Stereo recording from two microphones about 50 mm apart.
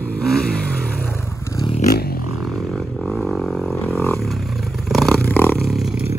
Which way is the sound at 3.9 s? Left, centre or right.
Left.